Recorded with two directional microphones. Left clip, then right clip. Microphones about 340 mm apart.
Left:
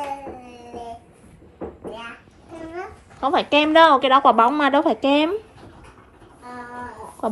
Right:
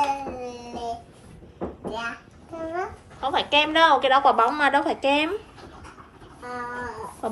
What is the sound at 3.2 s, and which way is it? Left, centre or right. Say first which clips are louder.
A woman's voice: left 3 dB; centre.